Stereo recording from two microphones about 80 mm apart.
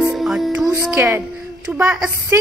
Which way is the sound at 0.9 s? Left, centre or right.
Right.